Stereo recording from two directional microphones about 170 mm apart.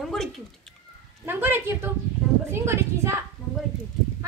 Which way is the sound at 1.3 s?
10° right (ahead or behind).